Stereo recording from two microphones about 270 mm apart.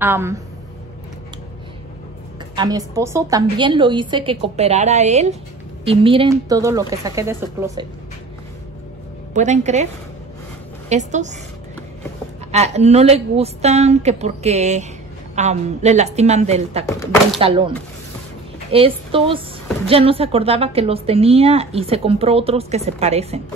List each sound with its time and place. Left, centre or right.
0.0 s a woman's voice: centre
2.5 s a woman's voice: centre
9.3 s a woman's voice: right
10.9 s a woman's voice: right
12.4 s a woman's voice: right
16.8 s speech: centre
17.4 s a woman's voice: centre